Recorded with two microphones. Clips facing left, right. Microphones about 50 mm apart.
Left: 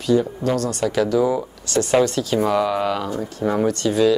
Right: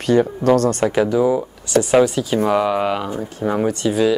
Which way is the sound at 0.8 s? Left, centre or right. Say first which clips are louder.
Right 2 dB; right.